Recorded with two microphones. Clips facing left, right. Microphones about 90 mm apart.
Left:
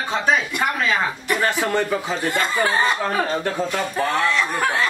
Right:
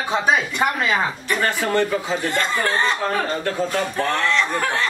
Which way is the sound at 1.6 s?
10° left (ahead or behind).